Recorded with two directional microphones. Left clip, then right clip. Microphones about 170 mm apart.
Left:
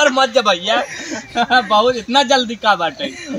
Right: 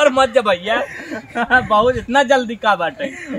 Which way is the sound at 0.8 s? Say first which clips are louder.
Left 1 dB; centre (ahead or behind).